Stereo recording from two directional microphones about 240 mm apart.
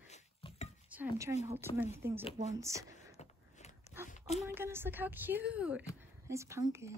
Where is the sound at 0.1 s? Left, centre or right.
Left.